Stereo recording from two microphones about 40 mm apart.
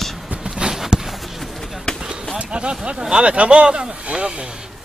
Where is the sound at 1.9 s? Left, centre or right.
Centre.